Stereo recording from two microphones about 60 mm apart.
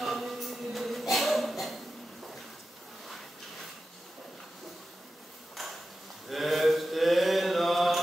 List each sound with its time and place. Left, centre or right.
0.0 s a sound: centre
5.6 s ping: centre
6.2 s mantra: centre